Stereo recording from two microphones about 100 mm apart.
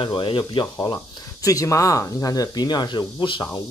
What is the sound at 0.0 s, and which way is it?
Speech, 55° left (ahead or behind).